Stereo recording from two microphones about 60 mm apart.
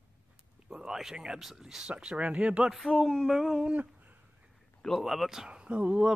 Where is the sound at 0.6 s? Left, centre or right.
Centre.